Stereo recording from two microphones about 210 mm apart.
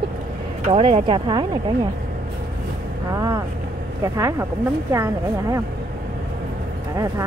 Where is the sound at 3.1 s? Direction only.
15° right (ahead or behind).